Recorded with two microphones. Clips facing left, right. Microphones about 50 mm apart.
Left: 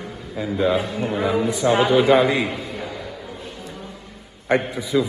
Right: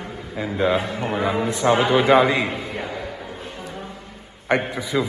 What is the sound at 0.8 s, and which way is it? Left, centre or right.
A man's voice, right.